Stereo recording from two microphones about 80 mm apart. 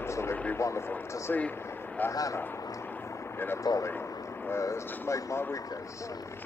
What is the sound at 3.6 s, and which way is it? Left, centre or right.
Speech, left.